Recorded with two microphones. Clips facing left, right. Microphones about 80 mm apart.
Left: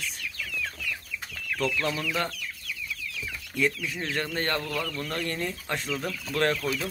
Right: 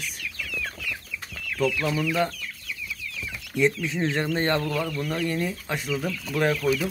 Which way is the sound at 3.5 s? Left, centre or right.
Right.